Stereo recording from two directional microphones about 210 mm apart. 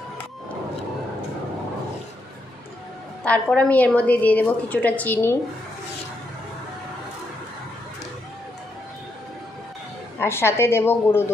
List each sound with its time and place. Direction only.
3.3 s a woman's voice: 5° left (ahead or behind)
10.2 s a woman's voice: 10° left (ahead or behind)